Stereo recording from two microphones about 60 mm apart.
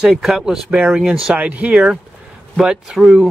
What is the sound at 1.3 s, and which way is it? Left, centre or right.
Speech, right.